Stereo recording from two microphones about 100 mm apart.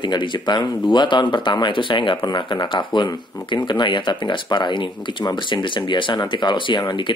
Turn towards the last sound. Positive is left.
turn(degrees=50)  # may be behind; listen again after turning